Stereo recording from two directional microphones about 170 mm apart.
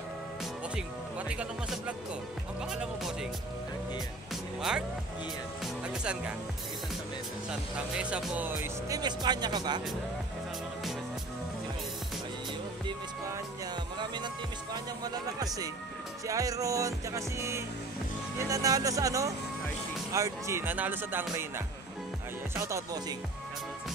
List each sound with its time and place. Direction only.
1.3 s speech: 5° right (ahead or behind)
4.6 s speech: 5° right (ahead or behind)
7.7 s speech: 5° right (ahead or behind); by 9.8 s 25° right (ahead or behind)
13.9 s music: 25° right (ahead or behind)
16.3 s speech: 20° right (ahead or behind)